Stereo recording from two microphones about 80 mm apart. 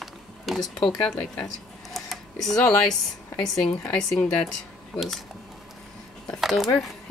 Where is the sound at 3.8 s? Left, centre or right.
Centre.